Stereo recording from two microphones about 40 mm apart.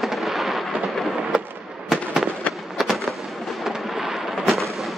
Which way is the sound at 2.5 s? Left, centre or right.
Left.